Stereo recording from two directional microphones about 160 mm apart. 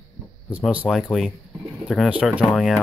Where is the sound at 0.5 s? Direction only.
10° right (ahead or behind).